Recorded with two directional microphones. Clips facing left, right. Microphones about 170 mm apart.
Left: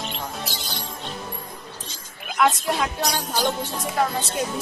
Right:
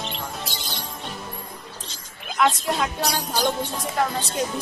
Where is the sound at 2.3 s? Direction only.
Centre (ahead or behind).